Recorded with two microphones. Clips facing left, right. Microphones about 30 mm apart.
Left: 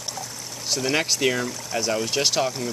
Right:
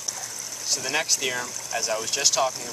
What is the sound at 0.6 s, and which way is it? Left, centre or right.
Speech, left.